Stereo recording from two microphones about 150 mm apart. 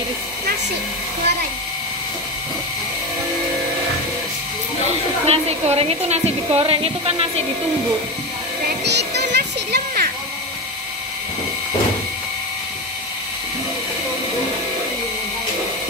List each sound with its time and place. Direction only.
4.8 s speech: 45° right (ahead or behind)
8.6 s music: 90° right